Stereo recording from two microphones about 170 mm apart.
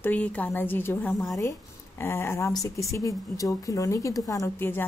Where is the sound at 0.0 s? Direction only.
10° left (ahead or behind).